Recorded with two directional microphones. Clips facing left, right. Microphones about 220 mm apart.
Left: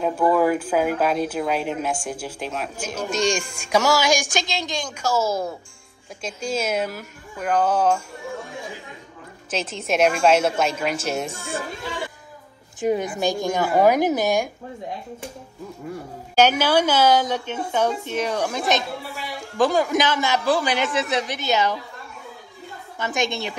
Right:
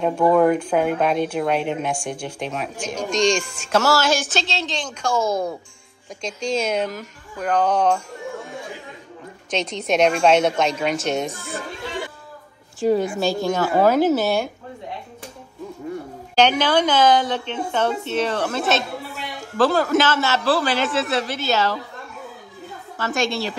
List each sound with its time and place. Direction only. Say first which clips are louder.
0.0 s a woman's voice: right 3 dB; 5° left (ahead or behind)
9.5 s speech: right 3 dB; 5° left (ahead or behind)
12.8 s a woman's voice: right 3 dB; 20° left (ahead or behind)
16.3 s a woman's voice: even; 10° left (ahead or behind)
22.9 s a woman's voice: right 2 dB; 15° left (ahead or behind)